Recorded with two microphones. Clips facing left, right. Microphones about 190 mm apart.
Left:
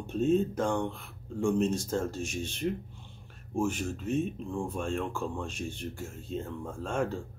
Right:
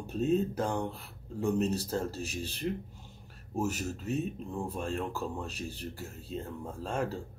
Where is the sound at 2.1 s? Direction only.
35° right (ahead or behind).